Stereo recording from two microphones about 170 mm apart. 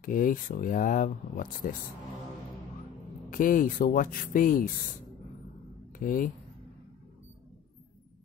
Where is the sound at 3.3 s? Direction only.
50° left (ahead or behind).